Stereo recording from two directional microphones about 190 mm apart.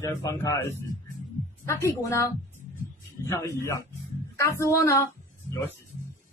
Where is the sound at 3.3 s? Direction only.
15° left (ahead or behind).